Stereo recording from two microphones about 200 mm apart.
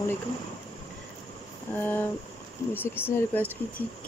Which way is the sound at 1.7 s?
10° left (ahead or behind).